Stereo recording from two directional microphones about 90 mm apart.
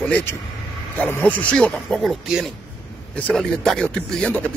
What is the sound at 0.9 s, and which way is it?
Speech, 20° left (ahead or behind).